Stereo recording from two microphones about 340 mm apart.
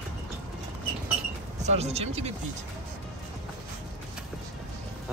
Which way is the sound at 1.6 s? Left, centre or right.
Centre.